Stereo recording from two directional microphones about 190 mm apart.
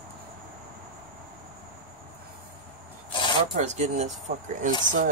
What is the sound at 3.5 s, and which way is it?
Speech, 40° right (ahead or behind).